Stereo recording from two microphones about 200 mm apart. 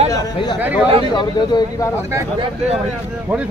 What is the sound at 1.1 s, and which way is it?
Speech, 20° left (ahead or behind).